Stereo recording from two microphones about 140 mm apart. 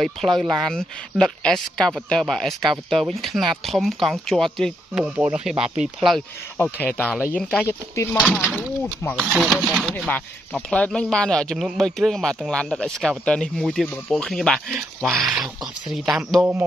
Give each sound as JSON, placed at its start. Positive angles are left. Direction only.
{"t": 0.0, "sound": "speech", "side_deg": 0}
{"t": 7.6, "sound": "speech", "side_deg": 20}
{"t": 9.3, "sound": "speech", "side_deg": 0}
{"t": 16.3, "sound": "a man's voice", "side_deg": -15}